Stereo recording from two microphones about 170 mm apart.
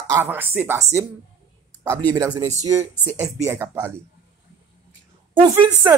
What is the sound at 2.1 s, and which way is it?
Speech, 20° right (ahead or behind).